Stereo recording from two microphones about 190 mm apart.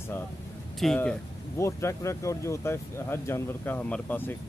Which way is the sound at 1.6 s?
15° left (ahead or behind).